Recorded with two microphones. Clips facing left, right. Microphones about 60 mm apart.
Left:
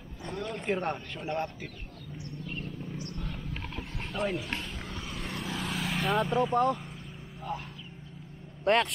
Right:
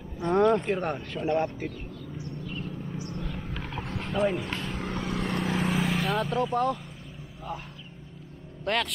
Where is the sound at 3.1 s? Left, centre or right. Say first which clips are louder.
Right 4 dB; right.